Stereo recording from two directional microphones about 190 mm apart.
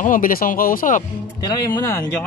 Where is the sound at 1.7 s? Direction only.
15° left (ahead or behind).